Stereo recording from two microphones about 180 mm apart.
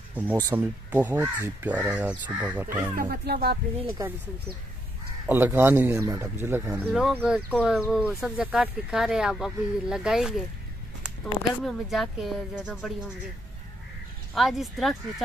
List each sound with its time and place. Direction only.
0.1 s speech: 10° right (ahead or behind)
3.0 s speech: 55° right (ahead or behind)
4.0 s speech: 20° right (ahead or behind)
5.2 s speech: 10° right (ahead or behind)
11.6 s speech: centre (ahead or behind)
14.3 s speech: centre (ahead or behind)